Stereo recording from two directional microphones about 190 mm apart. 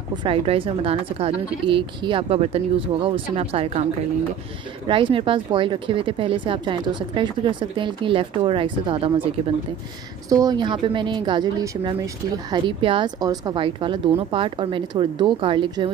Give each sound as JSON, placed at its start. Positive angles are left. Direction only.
{"t": 0.2, "sound": "a woman's voice", "side_deg": -30}
{"t": 4.8, "sound": "speech", "side_deg": -25}
{"t": 10.3, "sound": "speech", "side_deg": -20}